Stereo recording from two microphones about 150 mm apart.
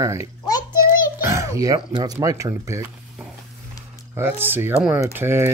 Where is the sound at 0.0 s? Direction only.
20° right (ahead or behind).